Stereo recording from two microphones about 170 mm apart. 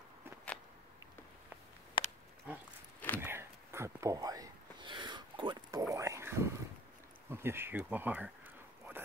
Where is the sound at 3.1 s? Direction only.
15° right (ahead or behind).